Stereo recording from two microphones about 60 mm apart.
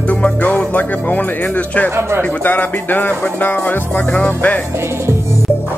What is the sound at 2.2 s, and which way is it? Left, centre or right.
Music, left.